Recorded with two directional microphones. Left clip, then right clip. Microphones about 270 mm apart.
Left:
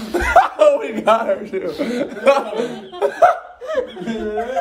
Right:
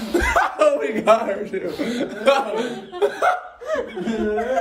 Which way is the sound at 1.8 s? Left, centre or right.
Left.